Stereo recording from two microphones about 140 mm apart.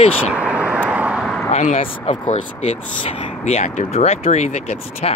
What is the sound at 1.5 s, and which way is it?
Speech, 55° left (ahead or behind).